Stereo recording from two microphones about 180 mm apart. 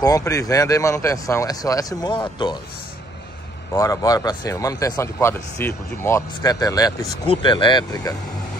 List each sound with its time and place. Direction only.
0.0 s speech: 20° left (ahead or behind)
3.7 s speech: 20° left (ahead or behind)